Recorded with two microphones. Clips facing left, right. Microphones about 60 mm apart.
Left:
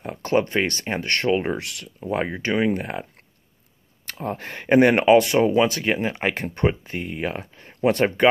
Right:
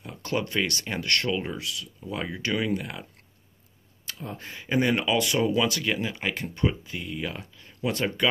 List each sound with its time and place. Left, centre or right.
0.0 s speech: left
1.6 s speech: left
4.0 s speech: left